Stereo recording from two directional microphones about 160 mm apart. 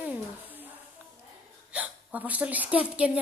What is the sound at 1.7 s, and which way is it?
Speech, 10° right (ahead or behind).